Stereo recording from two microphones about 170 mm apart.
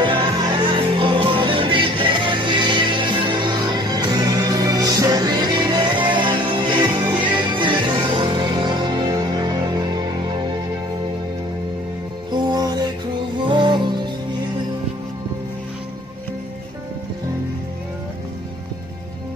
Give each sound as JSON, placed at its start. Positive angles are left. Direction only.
{"t": 0.0, "sound": "music", "side_deg": -30}
{"t": 12.3, "sound": "music", "side_deg": -25}